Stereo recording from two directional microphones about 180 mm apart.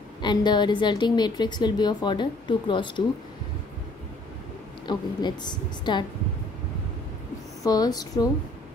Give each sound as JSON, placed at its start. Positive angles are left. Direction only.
{"t": 0.2, "sound": "a woman's voice", "side_deg": 25}
{"t": 4.8, "sound": "a woman's voice", "side_deg": 25}
{"t": 7.6, "sound": "a woman's voice", "side_deg": 20}